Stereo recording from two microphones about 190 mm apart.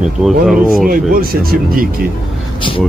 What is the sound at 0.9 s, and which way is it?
Speech, 50° right (ahead or behind).